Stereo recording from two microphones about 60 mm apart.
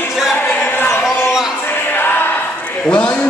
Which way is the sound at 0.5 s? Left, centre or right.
Left.